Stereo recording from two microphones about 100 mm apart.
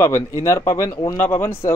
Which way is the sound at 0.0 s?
30° left (ahead or behind).